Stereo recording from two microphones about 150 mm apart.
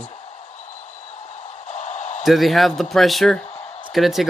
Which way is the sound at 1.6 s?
50° left (ahead or behind).